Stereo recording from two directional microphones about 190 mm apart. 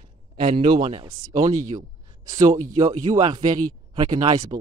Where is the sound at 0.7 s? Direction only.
25° right (ahead or behind).